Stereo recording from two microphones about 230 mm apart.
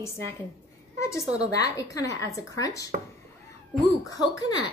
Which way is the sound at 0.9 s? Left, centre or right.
Centre.